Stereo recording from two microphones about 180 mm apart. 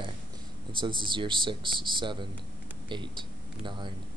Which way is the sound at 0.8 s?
25° right (ahead or behind).